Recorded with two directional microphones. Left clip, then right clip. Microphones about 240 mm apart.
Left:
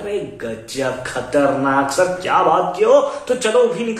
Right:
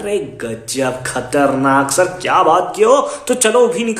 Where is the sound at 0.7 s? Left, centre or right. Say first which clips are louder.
Right 3 dB; right.